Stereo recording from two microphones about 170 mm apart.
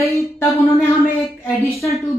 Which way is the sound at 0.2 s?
15° left (ahead or behind).